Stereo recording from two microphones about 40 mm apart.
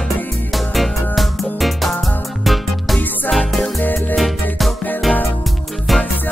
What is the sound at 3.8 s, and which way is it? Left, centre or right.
Music, left.